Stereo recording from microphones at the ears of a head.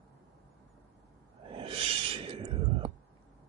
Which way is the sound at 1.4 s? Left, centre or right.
Right.